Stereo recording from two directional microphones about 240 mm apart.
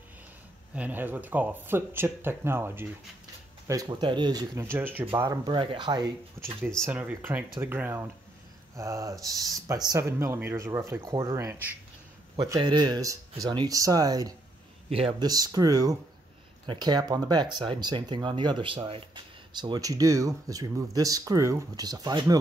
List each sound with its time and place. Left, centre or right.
0.7 s speech: centre